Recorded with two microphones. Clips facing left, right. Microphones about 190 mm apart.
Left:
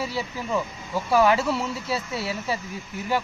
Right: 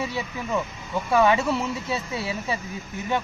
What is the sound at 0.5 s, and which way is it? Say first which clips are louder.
Speech: right 1 dB; centre (ahead or behind).